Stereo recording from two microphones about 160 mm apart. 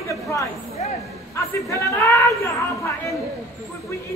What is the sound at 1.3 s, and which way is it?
Speech, 20° left (ahead or behind).